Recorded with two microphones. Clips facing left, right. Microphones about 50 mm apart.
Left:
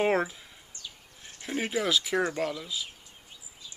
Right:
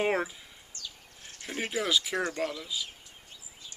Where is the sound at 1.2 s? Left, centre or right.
Centre.